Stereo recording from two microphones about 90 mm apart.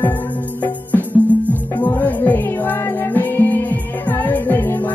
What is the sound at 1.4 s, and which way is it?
Music, 20° left (ahead or behind).